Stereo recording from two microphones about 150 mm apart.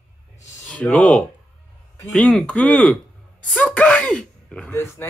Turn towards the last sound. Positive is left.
turn(degrees=20)  # may be behind; listen again after turning